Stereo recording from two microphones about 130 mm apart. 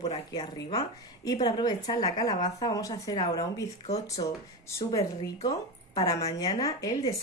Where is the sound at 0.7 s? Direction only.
30° left (ahead or behind).